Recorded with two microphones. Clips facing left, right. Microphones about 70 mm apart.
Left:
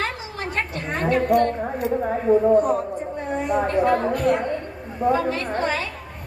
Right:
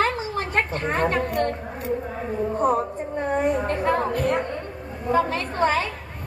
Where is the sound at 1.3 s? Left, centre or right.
Left.